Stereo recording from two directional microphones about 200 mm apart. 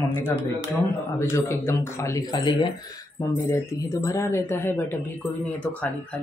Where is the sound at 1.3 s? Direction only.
15° left (ahead or behind).